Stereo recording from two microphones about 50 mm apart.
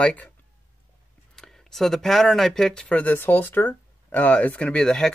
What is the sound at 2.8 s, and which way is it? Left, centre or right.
Speech, left.